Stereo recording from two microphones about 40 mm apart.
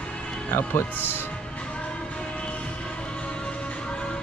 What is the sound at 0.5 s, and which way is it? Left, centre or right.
Speech, left.